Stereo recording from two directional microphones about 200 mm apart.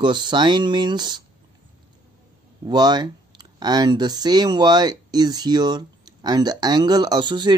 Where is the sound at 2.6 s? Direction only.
20° right (ahead or behind).